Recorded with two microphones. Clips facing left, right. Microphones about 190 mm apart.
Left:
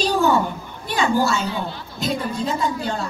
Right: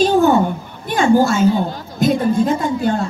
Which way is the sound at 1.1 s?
50° right (ahead or behind).